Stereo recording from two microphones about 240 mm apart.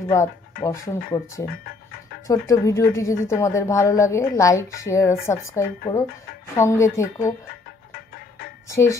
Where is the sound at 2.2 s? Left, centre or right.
Centre.